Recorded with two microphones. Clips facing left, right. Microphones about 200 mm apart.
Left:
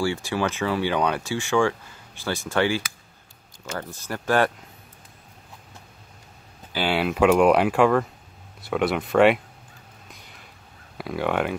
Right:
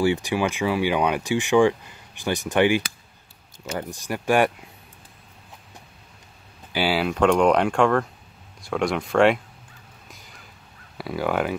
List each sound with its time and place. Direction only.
0.0 s speech: 20° right (ahead or behind)
6.7 s speech: 10° right (ahead or behind)
7.0 s speech: 5° left (ahead or behind)
10.1 s a sound: centre (ahead or behind)
11.0 s speech: centre (ahead or behind)